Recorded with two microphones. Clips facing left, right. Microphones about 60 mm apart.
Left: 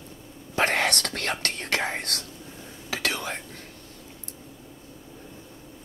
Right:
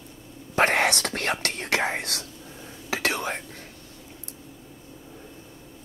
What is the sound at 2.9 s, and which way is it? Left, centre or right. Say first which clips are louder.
Whispering: right 3 dB; right.